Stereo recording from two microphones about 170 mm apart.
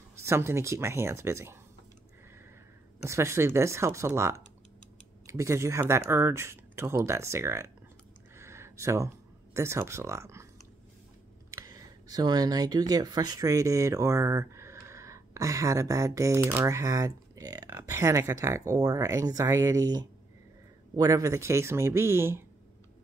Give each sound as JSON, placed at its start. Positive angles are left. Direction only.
{"t": 0.1, "sound": "speech", "side_deg": -15}
{"t": 3.0, "sound": "speech", "side_deg": -15}
{"t": 8.4, "sound": "a sound", "side_deg": -15}
{"t": 11.5, "sound": "speech", "side_deg": -20}